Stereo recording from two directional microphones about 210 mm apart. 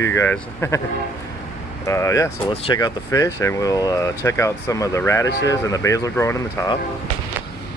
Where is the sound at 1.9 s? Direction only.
15° left (ahead or behind).